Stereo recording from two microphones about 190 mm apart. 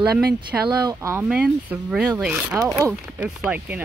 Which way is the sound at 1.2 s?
5° right (ahead or behind).